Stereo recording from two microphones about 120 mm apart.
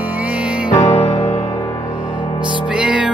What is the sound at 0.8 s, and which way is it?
Music, 60° left (ahead or behind).